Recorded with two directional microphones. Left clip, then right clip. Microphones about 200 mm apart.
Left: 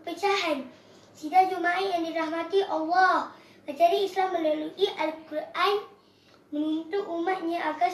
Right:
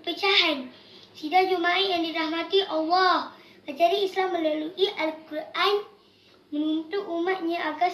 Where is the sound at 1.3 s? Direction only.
Centre (ahead or behind).